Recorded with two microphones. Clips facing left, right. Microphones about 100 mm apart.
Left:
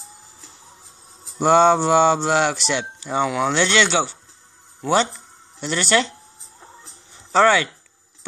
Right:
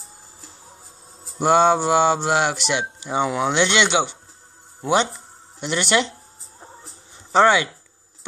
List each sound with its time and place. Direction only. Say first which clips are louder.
1.4 s speech: left 2 dB; 10° right (ahead or behind)
7.3 s speech: even; 20° right (ahead or behind)